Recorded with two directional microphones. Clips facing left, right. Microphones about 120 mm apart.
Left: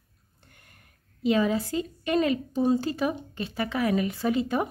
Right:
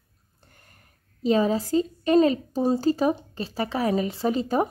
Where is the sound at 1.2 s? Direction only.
35° right (ahead or behind).